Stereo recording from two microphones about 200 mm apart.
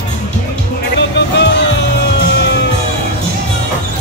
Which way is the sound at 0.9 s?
60° left (ahead or behind).